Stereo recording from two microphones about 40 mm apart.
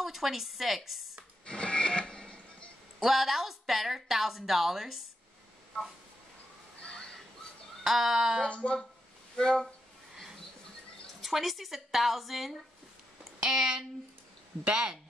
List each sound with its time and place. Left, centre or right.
0.0 s a woman's voice: centre
1.4 s music: left
3.0 s a woman's voice: centre
6.8 s a sound: centre
7.8 s a woman's voice: centre
8.5 s speech: left
11.1 s a woman's voice: centre
13.4 s a woman's voice: centre